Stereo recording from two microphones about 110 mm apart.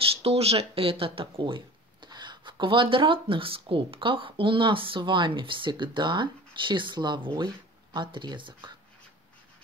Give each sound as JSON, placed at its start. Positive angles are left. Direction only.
{"t": 0.2, "sound": "speech", "side_deg": -70}